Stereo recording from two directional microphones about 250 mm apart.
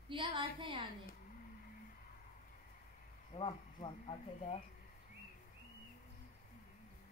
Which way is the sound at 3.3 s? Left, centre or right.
Centre.